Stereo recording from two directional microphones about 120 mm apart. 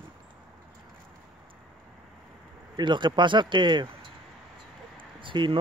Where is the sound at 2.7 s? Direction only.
40° right (ahead or behind).